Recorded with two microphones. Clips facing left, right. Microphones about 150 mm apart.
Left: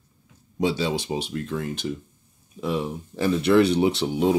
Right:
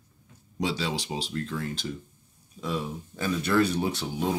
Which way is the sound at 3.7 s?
70° left (ahead or behind).